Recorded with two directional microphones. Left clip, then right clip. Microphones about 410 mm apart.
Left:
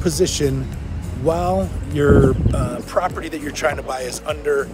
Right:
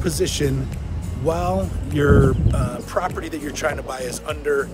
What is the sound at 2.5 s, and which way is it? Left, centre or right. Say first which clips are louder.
Speech: left 3 dB; centre.